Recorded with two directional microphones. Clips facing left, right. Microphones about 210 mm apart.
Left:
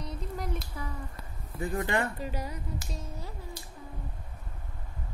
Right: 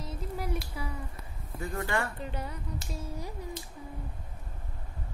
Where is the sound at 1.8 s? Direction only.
20° left (ahead or behind).